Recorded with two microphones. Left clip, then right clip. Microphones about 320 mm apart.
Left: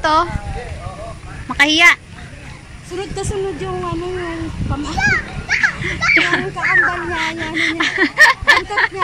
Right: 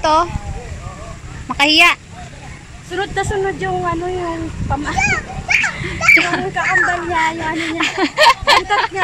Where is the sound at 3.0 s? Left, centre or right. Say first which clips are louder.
Right 6 dB; right.